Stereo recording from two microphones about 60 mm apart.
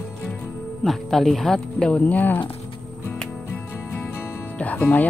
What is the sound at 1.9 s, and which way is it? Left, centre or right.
Speech, left.